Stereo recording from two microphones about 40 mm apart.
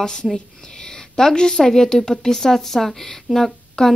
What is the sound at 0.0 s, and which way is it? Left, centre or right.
Speech, centre.